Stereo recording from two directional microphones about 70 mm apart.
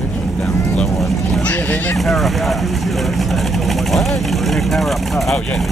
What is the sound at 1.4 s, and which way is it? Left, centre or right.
Vehicle, left.